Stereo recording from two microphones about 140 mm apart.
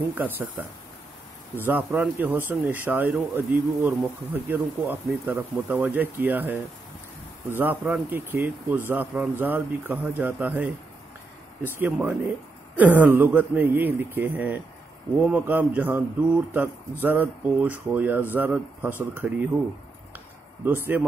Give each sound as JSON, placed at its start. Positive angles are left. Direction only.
{"t": 0.1, "sound": "speech", "side_deg": -15}
{"t": 20.6, "sound": "speech", "side_deg": -15}